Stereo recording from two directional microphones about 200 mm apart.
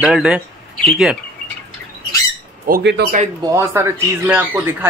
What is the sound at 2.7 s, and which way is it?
Speech, 50° right (ahead or behind).